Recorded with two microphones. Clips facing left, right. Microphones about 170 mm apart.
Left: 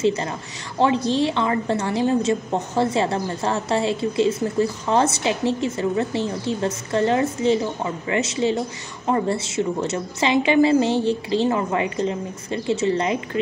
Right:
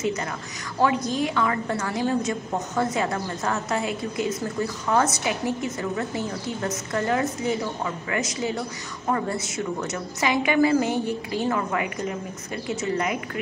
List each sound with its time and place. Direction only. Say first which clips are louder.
0.0 s a woman's voice: left 5 dB; 30° left (ahead or behind)